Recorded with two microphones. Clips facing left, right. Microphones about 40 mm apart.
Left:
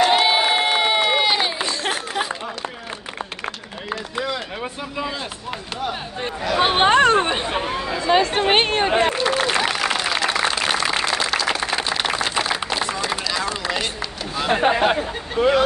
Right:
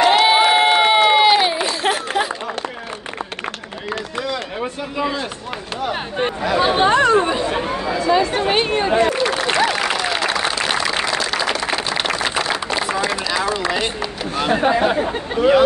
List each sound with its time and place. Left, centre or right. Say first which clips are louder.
0.2 s crowd: right 5 dB; centre
0.9 s a sound: right 6 dB; centre
1.5 s run: right 4 dB; centre
4.6 s speech: right 4 dB; centre
6.6 s speech: even; left
10.1 s a sound: right 1 dB; centre
12.0 s a sound: right 2 dB; centre
12.7 s run: right 4 dB; centre
14.5 s speech: right 1 dB; left